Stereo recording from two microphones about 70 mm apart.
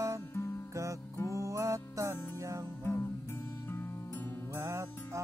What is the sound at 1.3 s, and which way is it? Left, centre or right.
Music, right.